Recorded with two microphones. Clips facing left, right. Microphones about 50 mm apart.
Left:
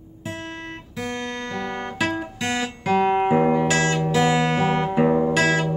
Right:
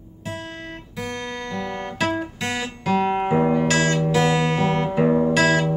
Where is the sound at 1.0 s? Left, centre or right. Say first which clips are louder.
Left 1 dB; centre.